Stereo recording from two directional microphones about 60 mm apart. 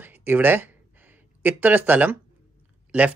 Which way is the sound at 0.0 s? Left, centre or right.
Right.